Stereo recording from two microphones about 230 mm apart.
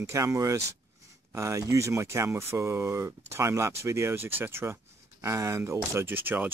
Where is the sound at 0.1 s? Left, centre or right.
Centre.